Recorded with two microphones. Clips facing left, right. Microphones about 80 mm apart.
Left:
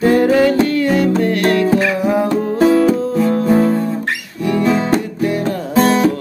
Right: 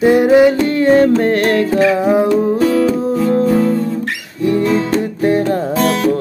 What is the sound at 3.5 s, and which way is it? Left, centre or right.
Guitar, left.